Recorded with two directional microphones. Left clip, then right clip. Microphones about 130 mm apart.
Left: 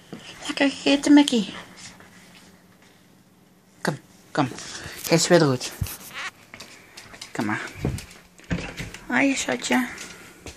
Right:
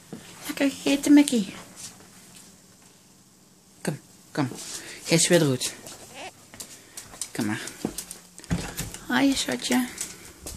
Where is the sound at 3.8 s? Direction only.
5° right (ahead or behind).